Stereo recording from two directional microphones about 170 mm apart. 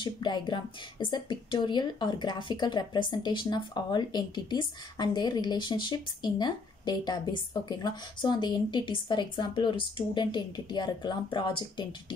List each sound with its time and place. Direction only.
0.0 s a woman's voice: 25° left (ahead or behind)